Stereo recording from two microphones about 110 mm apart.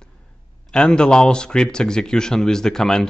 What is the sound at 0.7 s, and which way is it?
A man's voice, 5° left (ahead or behind).